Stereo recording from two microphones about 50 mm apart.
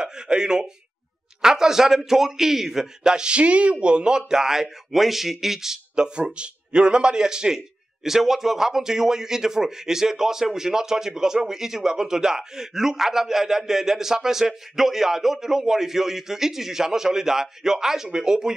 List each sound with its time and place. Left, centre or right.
0.0 s speech: centre